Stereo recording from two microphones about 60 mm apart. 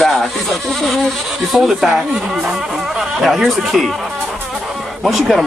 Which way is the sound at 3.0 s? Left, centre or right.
Centre.